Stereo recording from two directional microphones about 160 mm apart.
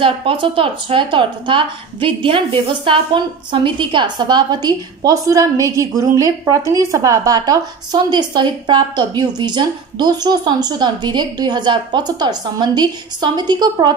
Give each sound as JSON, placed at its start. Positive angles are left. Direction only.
{"t": 0.0, "sound": "a woman's voice", "side_deg": -35}